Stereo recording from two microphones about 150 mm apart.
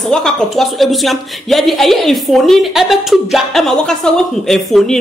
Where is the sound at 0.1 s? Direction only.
Centre (ahead or behind).